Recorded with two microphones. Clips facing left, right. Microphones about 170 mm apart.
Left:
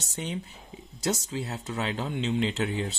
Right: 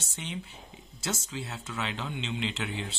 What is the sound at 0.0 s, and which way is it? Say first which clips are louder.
Speech: left 5 dB; 40° left (ahead or behind).